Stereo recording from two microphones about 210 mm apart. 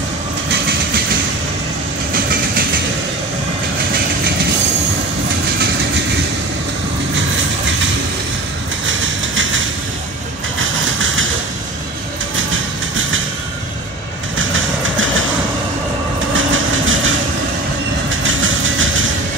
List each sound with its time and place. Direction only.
8.8 s a sound: 65° right (ahead or behind)
14.5 s train: 70° right (ahead or behind)
16.3 s train: 70° right (ahead or behind)
18.2 s vehicle: 65° right (ahead or behind)